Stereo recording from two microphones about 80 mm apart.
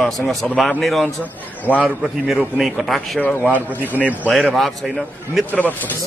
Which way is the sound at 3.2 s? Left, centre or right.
Left.